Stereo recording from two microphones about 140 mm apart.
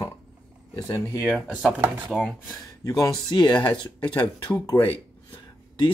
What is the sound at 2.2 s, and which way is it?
Speech, centre (ahead or behind).